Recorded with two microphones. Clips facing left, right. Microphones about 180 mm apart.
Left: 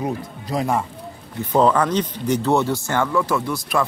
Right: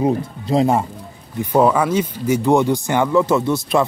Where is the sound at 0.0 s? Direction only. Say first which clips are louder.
Right 7 dB; 25° right (ahead or behind).